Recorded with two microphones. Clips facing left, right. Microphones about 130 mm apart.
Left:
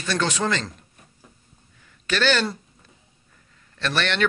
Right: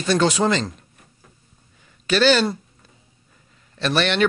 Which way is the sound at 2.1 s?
15° right (ahead or behind).